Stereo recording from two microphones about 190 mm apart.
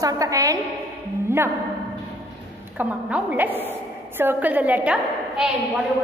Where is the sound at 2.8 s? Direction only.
10° right (ahead or behind).